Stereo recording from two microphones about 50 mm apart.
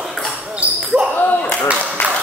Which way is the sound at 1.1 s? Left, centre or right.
Left.